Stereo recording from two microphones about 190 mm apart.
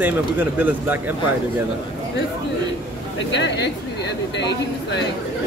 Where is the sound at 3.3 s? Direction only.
70° left (ahead or behind).